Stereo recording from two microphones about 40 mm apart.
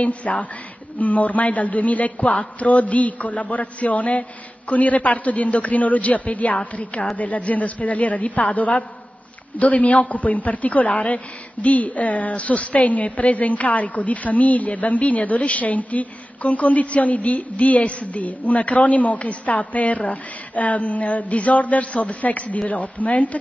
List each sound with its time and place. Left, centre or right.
0.0 s a woman's voice: left